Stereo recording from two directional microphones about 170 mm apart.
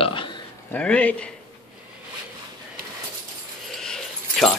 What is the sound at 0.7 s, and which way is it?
Speech, 5° left (ahead or behind).